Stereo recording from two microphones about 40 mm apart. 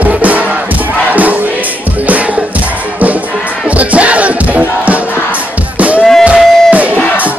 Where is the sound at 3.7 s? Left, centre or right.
Right.